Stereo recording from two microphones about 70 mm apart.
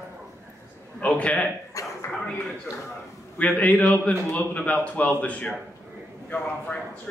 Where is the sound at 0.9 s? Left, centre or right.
Centre.